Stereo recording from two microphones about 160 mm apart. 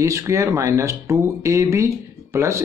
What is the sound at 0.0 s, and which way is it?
Speech, 20° right (ahead or behind).